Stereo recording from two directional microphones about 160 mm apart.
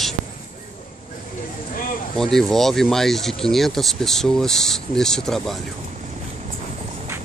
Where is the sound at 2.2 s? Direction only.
5° left (ahead or behind).